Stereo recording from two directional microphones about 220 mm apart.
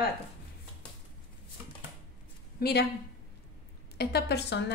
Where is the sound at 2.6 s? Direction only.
45° left (ahead or behind).